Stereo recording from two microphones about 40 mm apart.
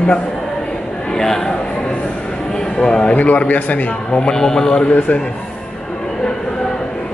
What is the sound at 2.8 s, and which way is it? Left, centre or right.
Speech, left.